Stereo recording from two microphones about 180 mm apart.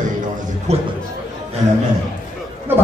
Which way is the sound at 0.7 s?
35° right (ahead or behind).